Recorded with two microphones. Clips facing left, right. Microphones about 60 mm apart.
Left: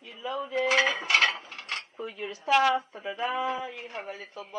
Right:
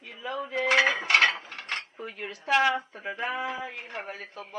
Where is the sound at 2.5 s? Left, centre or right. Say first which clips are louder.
Left 1 dB; centre.